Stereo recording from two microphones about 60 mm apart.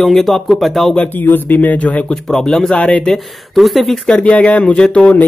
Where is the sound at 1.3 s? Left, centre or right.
Left.